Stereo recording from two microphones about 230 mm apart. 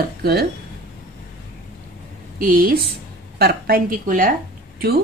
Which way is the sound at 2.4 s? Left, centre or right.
Right.